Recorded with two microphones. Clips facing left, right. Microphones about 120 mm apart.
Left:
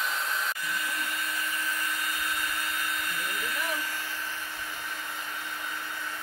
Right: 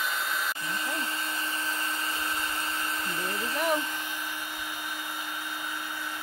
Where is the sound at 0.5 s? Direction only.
25° right (ahead or behind).